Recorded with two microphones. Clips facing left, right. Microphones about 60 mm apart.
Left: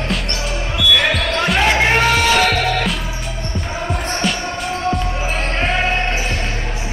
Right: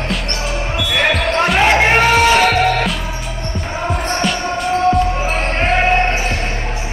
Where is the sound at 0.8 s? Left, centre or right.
Right.